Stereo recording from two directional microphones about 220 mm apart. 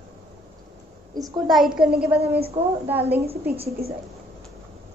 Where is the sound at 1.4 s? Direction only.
Centre (ahead or behind).